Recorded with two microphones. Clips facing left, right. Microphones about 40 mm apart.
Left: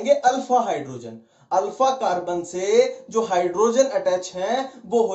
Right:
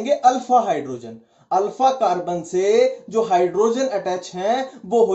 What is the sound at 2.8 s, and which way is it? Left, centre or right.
Speech, right.